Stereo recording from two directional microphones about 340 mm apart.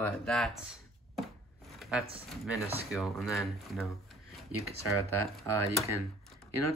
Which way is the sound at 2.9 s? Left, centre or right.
Centre.